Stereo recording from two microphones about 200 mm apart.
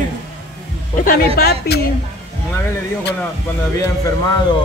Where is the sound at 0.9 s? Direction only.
45° left (ahead or behind).